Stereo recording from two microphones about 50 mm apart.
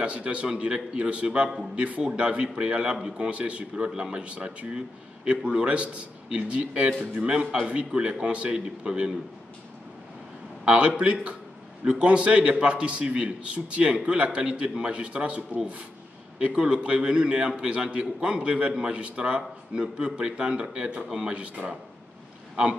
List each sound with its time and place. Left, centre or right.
0.0 s speech: right
7.2 s speech: centre
10.6 s speech: centre